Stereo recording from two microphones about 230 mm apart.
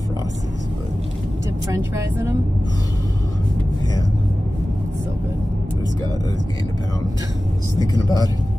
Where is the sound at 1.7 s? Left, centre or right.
Centre.